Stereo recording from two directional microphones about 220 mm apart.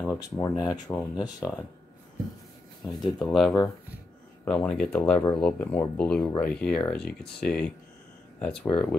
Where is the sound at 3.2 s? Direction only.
Centre (ahead or behind).